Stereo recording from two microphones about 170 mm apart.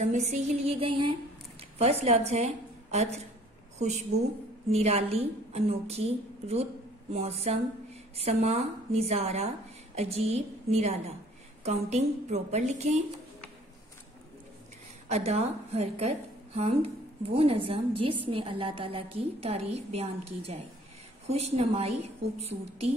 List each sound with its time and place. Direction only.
0.0 s a woman's voice: 45° right (ahead or behind)
15.0 s a woman's voice: 40° right (ahead or behind)